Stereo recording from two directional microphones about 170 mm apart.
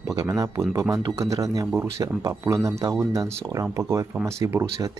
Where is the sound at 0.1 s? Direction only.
20° right (ahead or behind).